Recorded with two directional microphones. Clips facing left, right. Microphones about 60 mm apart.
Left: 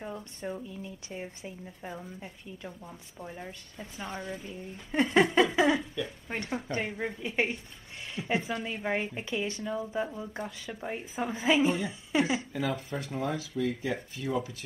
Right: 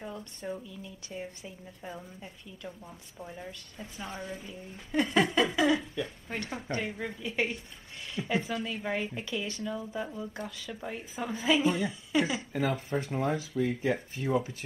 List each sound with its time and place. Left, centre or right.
0.0 s a woman's voice: centre
4.0 s a woman's voice: centre
4.9 s a woman's voice: left
12.7 s speech: right